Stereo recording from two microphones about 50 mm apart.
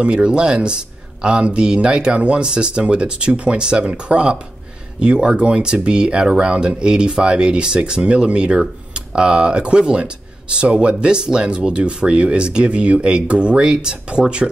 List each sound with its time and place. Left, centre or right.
0.0 s speech: centre